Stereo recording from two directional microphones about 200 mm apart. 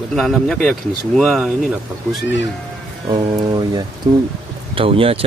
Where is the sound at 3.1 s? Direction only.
20° right (ahead or behind).